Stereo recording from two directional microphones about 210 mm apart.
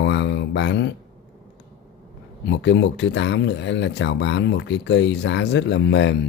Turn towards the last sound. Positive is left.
turn(degrees=60)  # may be behind; listen again after turning